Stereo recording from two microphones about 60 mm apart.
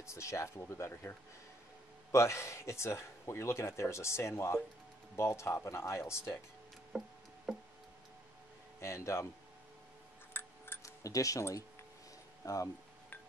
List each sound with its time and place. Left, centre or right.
0.0 s speech: left
2.1 s speech: left
6.9 s music: centre
8.8 s speech: left
10.3 s a sound: left
10.8 s music: left
12.4 s speech: left